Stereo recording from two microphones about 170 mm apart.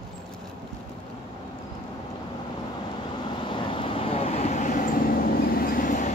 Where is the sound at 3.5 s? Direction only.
30° left (ahead or behind); by 4.9 s 50° left (ahead or behind).